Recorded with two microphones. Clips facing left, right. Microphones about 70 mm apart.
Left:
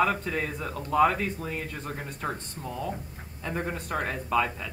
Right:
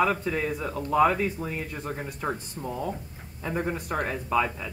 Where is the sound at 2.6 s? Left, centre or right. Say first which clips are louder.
Right 1 dB; right.